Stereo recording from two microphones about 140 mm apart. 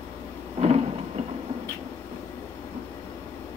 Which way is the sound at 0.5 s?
50° right (ahead or behind).